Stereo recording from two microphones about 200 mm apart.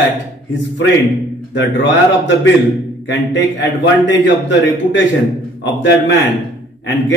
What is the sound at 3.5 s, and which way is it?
A man's voice, 65° left (ahead or behind).